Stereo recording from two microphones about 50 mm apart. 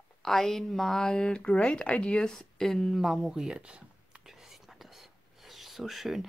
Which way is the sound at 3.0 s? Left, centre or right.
Centre.